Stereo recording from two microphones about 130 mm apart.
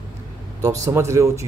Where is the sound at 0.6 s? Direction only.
25° right (ahead or behind).